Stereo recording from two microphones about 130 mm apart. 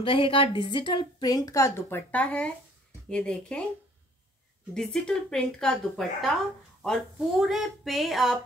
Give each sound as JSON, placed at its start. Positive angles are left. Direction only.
{"t": 0.0, "sound": "a woman's voice", "side_deg": 40}
{"t": 4.7, "sound": "speech", "side_deg": 5}